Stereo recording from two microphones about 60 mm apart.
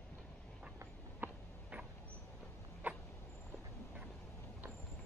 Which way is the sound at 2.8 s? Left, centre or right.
Right.